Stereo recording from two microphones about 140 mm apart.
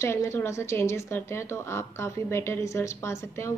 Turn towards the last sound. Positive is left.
turn(degrees=20)  # may be behind; listen again after turning